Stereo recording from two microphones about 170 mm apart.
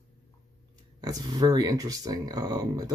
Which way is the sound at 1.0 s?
20° right (ahead or behind).